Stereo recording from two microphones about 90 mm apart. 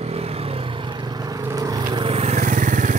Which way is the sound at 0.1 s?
90° right.